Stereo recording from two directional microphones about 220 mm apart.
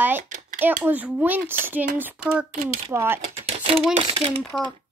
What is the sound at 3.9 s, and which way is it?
Speech, 25° right (ahead or behind).